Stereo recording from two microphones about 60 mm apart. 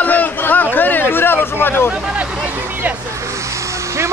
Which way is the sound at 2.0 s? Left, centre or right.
Centre.